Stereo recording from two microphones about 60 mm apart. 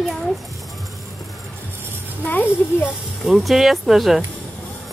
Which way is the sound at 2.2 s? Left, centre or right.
Left.